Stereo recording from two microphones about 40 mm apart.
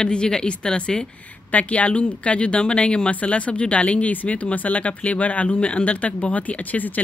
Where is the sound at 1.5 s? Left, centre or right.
Left.